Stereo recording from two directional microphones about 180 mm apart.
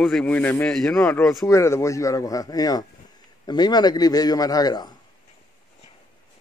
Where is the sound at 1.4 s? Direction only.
15° left (ahead or behind).